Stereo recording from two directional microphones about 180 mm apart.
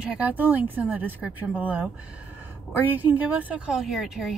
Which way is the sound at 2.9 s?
10° right (ahead or behind).